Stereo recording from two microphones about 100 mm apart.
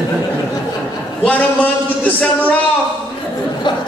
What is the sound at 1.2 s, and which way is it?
A man's voice, 15° left (ahead or behind).